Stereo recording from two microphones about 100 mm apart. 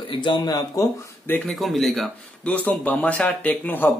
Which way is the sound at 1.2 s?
15° left (ahead or behind).